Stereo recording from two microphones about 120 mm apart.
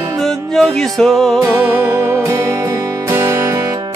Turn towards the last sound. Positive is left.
turn(degrees=-25)  # may be behind; listen again after turning